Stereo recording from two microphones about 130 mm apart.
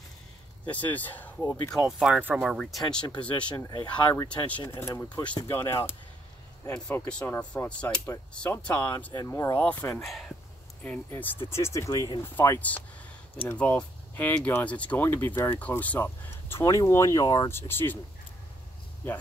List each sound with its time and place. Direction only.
0.7 s speech: 10° left (ahead or behind)
1.7 s speech: centre (ahead or behind)
2.5 s speech: 5° left (ahead or behind)
3.5 s speech: 35° left (ahead or behind)
4.3 s speech: 10° left (ahead or behind)
6.9 s speech: 10° left (ahead or behind)
9.6 s speech: 10° left (ahead or behind)
10.0 s speech: centre (ahead or behind)
10.8 s speech: 10° left (ahead or behind)